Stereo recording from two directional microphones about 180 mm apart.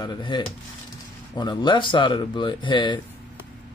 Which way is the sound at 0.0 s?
25° left (ahead or behind).